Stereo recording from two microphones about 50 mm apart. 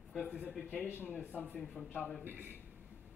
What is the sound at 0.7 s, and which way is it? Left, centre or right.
Speech, left.